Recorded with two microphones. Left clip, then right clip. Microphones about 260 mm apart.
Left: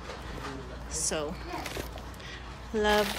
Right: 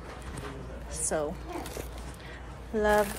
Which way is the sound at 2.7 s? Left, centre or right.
Centre.